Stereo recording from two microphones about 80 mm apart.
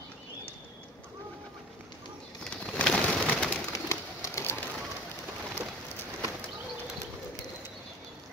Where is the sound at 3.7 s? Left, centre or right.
Left.